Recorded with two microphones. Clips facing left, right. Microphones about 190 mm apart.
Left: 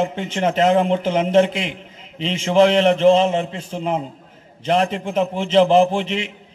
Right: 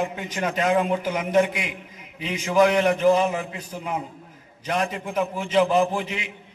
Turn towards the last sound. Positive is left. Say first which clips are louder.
# left 6 dB
turn(degrees=25)  # may be behind; listen again after turning